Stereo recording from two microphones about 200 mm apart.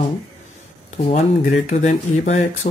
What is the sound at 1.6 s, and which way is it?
Speech, 35° left (ahead or behind).